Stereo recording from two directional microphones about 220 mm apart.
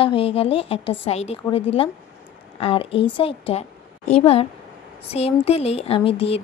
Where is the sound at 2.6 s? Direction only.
25° left (ahead or behind).